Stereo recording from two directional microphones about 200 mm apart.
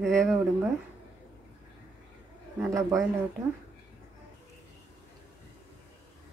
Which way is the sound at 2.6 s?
15° right (ahead or behind).